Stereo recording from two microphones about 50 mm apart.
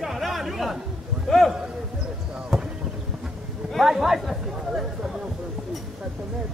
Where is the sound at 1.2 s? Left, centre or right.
Centre.